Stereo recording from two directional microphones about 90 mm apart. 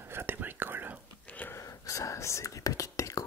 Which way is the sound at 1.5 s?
40° left (ahead or behind).